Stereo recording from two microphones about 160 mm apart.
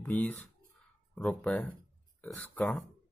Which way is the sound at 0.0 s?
10° left (ahead or behind).